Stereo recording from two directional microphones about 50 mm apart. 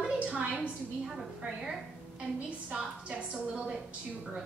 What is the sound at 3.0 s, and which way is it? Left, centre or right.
Speech, right.